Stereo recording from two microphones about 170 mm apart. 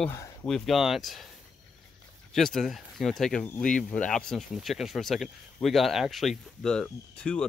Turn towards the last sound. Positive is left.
turn(degrees=5)  # may be behind; listen again after turning